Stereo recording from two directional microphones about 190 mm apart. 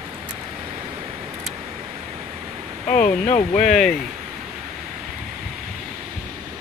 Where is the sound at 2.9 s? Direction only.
45° left (ahead or behind).